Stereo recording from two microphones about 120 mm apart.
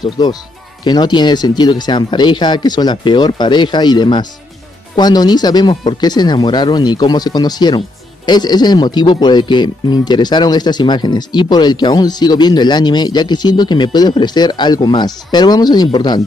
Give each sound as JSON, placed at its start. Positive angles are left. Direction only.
{"t": 0.8, "sound": "speech", "side_deg": 35}